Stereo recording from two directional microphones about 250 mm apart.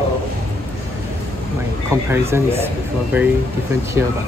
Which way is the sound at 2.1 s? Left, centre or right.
Centre.